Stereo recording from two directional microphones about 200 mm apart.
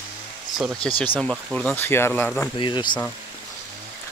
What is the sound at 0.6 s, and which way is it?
Speech, centre (ahead or behind).